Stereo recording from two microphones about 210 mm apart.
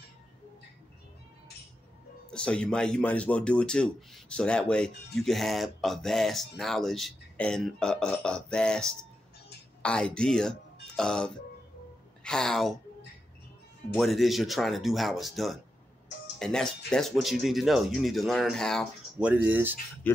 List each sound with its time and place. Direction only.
2.3 s speech: 5° left (ahead or behind)
13.9 s speech: centre (ahead or behind)